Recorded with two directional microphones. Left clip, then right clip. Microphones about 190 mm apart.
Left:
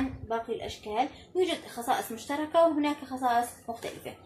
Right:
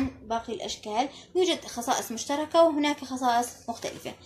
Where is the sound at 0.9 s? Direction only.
50° right (ahead or behind).